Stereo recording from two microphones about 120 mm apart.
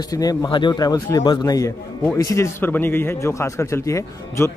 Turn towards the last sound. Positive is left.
turn(degrees=25)  # may be behind; listen again after turning